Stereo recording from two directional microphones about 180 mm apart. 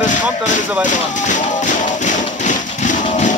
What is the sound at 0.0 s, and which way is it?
Speech, 45° left (ahead or behind).